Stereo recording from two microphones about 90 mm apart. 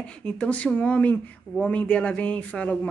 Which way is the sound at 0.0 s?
10° left (ahead or behind).